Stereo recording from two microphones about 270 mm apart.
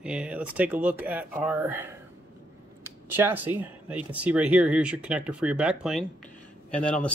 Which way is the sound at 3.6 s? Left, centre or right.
Centre.